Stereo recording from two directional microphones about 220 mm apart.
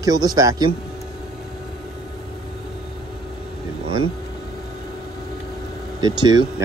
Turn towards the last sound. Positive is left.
turn(degrees=-20)  # may be behind; listen again after turning